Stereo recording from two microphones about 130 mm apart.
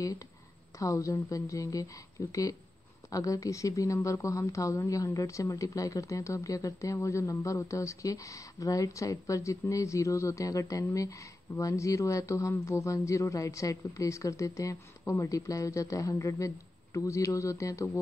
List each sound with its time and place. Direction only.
0.7 s speech: 25° left (ahead or behind)